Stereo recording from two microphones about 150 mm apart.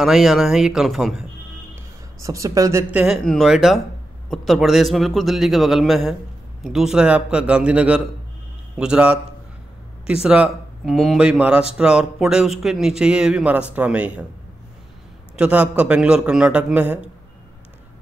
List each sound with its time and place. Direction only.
0.0 s speech: centre (ahead or behind)
2.2 s speech: 20° right (ahead or behind)
2.9 s a man's voice: 10° right (ahead or behind)
10.2 s speech: 5° right (ahead or behind)
15.3 s a man's voice: 10° right (ahead or behind)